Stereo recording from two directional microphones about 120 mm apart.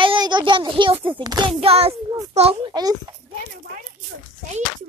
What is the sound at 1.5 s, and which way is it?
A child's voice, 55° right (ahead or behind).